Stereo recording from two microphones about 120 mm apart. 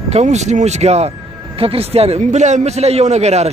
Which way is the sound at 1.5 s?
55° right (ahead or behind).